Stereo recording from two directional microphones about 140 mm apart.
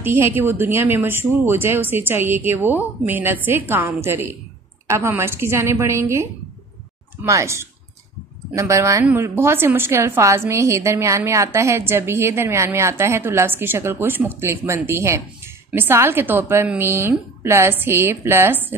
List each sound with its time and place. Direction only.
0.0 s a woman's voice: 15° right (ahead or behind)
7.2 s a woman's voice: 20° right (ahead or behind)